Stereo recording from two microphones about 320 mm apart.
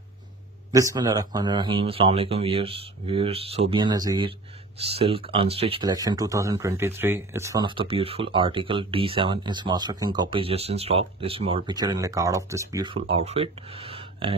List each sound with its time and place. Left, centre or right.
0.7 s speech: centre